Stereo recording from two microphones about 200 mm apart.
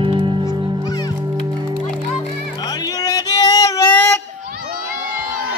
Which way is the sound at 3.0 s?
20° left (ahead or behind).